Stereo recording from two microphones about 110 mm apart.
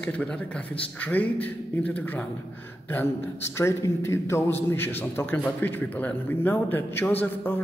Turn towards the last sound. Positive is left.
turn(degrees=20)  # may be behind; listen again after turning